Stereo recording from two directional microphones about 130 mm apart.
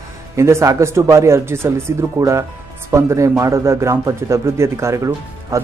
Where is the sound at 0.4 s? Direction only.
20° right (ahead or behind).